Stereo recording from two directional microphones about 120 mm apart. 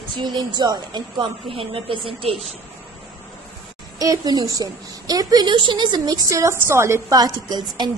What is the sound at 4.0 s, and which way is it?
A woman's voice, 30° right (ahead or behind).